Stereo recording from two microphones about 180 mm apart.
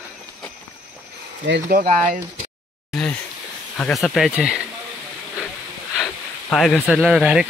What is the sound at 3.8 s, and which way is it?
Speech, centre (ahead or behind).